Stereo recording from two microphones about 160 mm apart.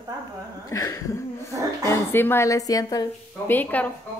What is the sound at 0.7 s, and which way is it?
A woman's voice, 20° left (ahead or behind).